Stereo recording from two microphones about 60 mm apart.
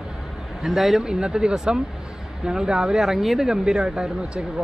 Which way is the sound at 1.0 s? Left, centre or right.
Centre.